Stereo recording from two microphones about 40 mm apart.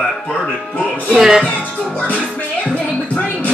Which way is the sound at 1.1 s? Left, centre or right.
Centre.